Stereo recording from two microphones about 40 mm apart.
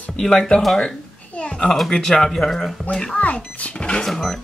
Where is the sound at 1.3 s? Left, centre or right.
Left.